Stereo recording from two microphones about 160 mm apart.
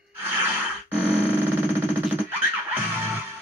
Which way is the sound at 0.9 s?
10° right (ahead or behind).